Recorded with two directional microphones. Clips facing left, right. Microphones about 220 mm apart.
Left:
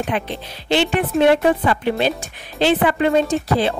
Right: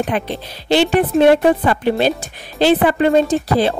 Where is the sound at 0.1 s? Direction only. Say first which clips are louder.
Right 3 dB; 40° right (ahead or behind).